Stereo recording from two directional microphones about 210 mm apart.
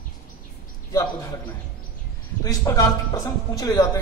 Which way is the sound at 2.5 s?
15° left (ahead or behind).